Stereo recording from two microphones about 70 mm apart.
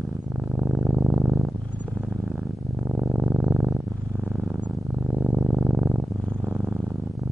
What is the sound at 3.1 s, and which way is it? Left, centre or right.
Purr, centre.